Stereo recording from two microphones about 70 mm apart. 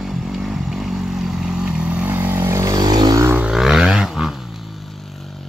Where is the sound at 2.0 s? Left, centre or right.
Right.